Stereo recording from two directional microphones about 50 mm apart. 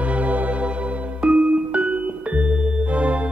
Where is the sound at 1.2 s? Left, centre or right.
Centre.